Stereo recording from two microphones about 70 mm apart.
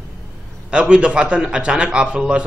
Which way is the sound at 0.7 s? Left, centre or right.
Centre.